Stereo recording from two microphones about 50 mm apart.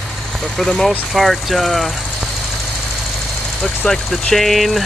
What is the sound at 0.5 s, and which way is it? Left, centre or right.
Speech, centre.